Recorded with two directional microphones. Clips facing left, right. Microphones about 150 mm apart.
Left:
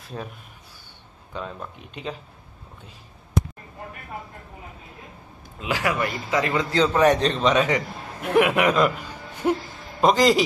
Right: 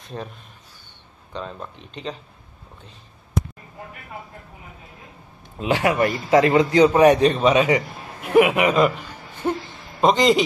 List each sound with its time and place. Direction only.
0.0 s speech: 5° left (ahead or behind)
5.6 s a man's voice: 25° right (ahead or behind)
5.9 s speech: 45° right (ahead or behind)
6.4 s a man's voice: 20° right (ahead or behind); by 8.9 s centre (ahead or behind)
9.5 s a sound: centre (ahead or behind)